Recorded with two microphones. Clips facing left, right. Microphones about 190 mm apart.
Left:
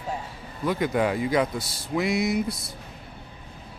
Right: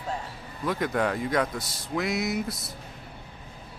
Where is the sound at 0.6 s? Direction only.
Centre (ahead or behind).